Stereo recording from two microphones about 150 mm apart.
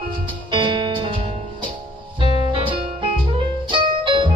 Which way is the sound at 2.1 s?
35° right (ahead or behind).